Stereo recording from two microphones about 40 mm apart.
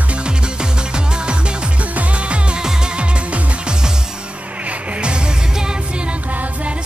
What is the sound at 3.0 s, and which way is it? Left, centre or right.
Music, right.